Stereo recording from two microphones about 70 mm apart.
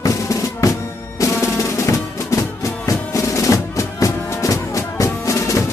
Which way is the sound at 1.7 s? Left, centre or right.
Left.